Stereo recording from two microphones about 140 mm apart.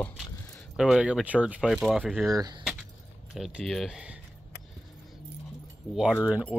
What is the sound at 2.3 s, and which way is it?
Speech, 30° right (ahead or behind).